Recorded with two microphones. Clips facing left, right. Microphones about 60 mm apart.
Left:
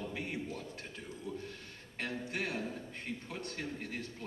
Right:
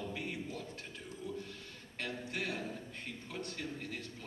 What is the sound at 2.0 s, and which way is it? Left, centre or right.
Speech, left.